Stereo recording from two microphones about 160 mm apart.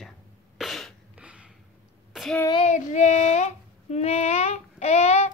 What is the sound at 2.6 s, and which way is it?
Speech, 50° left (ahead or behind).